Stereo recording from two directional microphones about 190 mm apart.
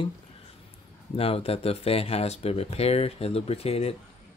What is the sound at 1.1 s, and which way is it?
Speech, 30° left (ahead or behind).